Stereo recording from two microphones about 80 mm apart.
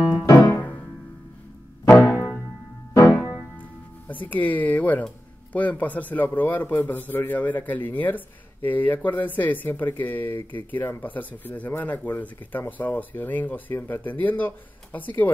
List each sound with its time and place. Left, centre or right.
0.2 s music: left
1.9 s music: left
2.9 s music: left
4.1 s speech: left